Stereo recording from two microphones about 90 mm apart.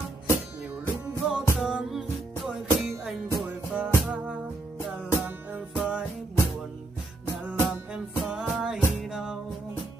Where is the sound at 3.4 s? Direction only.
15° right (ahead or behind).